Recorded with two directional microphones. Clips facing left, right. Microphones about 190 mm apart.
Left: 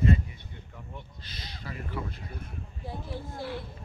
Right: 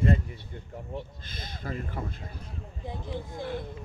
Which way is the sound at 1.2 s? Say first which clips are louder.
Right 5 dB; 50° right (ahead or behind).